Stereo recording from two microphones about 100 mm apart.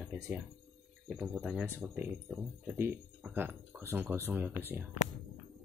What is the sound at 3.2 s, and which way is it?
Speech, 20° right (ahead or behind).